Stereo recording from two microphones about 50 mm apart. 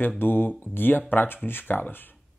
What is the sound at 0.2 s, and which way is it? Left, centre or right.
Speech, left.